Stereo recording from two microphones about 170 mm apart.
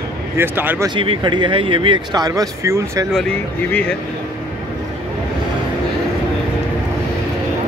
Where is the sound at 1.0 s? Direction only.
30° right (ahead or behind).